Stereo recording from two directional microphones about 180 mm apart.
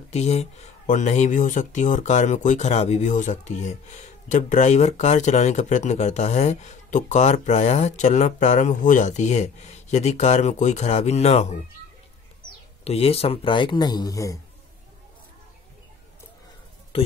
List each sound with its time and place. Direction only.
0.1 s speech: 35° left (ahead or behind)
12.8 s speech: 35° left (ahead or behind); by 14.4 s 20° left (ahead or behind)